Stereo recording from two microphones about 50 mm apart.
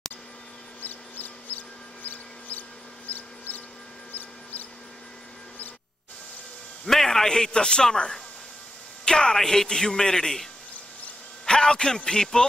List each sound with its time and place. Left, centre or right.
0.8 s a sound: left
3.1 s mouse: left
6.9 s a man's voice: centre